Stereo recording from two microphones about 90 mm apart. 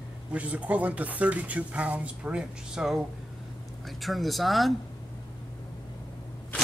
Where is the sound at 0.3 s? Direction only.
15° right (ahead or behind).